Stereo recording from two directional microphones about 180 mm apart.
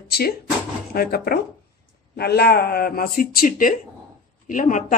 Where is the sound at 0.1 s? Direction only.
60° left (ahead or behind).